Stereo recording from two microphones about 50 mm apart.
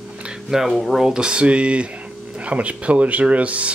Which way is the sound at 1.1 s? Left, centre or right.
Centre.